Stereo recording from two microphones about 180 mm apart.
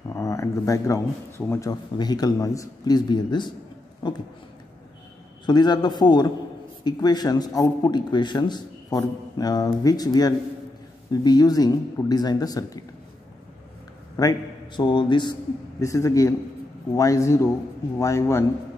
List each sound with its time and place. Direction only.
0.1 s a sound: 15° left (ahead or behind)
1.5 s speech: 20° left (ahead or behind)
5.4 s speech: 25° left (ahead or behind)
14.2 s a man's voice: 20° left (ahead or behind)